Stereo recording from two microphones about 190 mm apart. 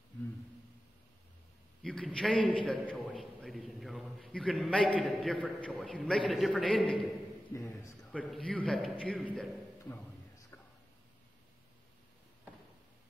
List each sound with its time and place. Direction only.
1.8 s a man's voice: 5° left (ahead or behind)
7.5 s a man's voice: 15° left (ahead or behind)